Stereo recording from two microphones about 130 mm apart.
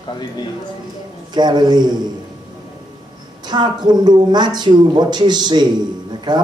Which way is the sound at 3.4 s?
35° right (ahead or behind).